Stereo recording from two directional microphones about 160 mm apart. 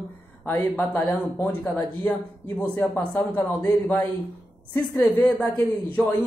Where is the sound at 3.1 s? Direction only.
20° left (ahead or behind).